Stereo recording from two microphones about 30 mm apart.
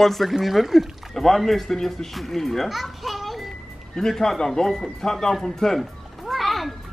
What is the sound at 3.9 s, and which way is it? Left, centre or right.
Speech, centre.